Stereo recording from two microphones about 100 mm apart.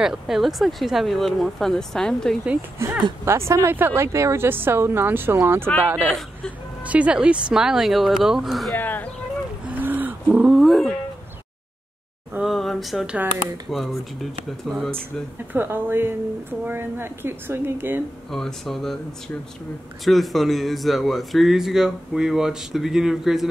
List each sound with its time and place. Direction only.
0.0 s speech: 5° right (ahead or behind)
3.3 s speech: 25° right (ahead or behind)
6.0 s speech: 5° left (ahead or behind)
6.9 s speech: 10° right (ahead or behind)
8.7 s speech: 20° left (ahead or behind)
9.7 s a sound: 20° right (ahead or behind)
10.4 s speech: centre (ahead or behind)
12.4 s a sound: centre (ahead or behind)
13.7 s speech: centre (ahead or behind)
14.9 s speech: 20° right (ahead or behind)
18.3 s speech: 5° left (ahead or behind)